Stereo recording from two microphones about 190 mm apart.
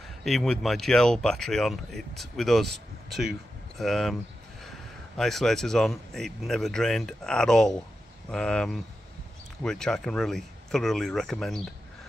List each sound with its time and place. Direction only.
0.2 s speech: centre (ahead or behind)